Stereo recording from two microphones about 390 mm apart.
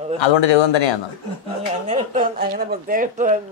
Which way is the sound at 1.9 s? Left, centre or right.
Centre.